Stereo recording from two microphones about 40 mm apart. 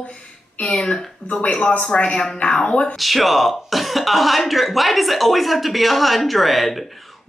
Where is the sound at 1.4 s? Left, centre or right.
Left.